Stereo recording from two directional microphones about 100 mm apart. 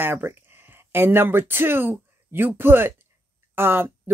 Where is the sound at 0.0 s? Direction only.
20° right (ahead or behind).